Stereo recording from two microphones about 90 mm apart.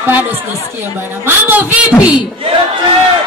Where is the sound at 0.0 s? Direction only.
20° right (ahead or behind).